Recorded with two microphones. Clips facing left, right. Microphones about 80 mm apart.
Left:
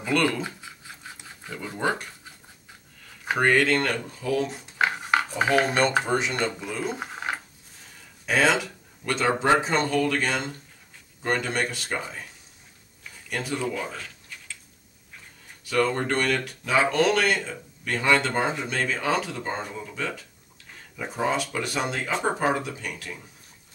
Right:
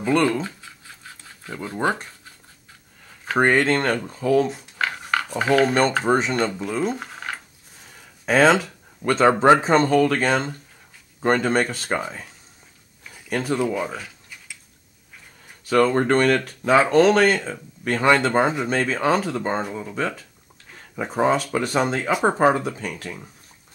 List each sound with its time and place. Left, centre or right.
0.0 s speech: right
0.4 s scratch: centre
1.5 s speech: right
3.3 s speech: right
4.7 s a sound: centre
6.0 s speech: right
6.9 s a sound: centre
8.3 s speech: right
13.3 s speech: right
13.6 s a sound: centre
15.6 s speech: right